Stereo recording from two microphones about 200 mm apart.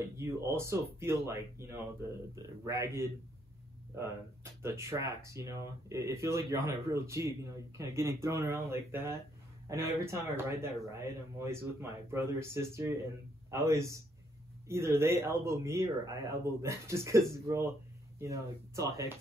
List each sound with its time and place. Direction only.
0.2 s speech: 15° right (ahead or behind)
4.6 s speech: 15° right (ahead or behind)